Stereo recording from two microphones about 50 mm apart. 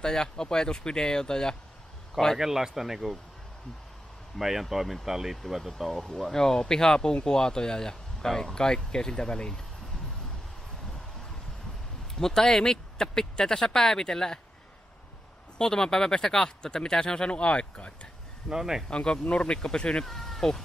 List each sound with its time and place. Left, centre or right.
0.0 s speech: centre
2.3 s speech: centre
4.4 s speech: centre
12.2 s speech: centre
15.5 s speech: centre
18.5 s speech: centre
18.9 s speech: centre
20.1 s speech: centre